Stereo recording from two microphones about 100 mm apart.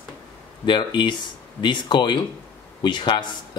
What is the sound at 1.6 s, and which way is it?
Speech, 50° left (ahead or behind).